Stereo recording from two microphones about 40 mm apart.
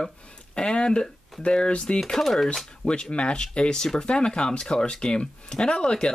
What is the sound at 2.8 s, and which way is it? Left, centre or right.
Speech, left.